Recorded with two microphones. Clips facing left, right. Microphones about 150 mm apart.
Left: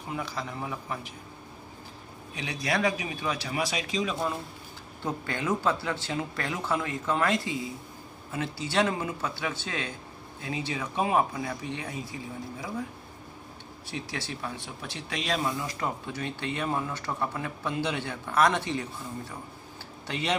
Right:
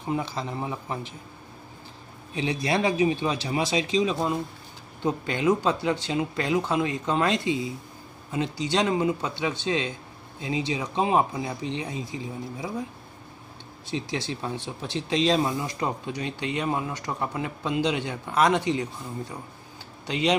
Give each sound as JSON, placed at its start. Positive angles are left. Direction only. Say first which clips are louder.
{"t": 0.1, "sound": "speech", "louder": "right 6 dB", "side_deg": -25}
{"t": 2.3, "sound": "speech", "louder": "right 5 dB", "side_deg": -25}
{"t": 13.8, "sound": "speech", "louder": "right 6 dB", "side_deg": -20}
{"t": 20.1, "sound": "speech", "louder": "right 6 dB", "side_deg": -15}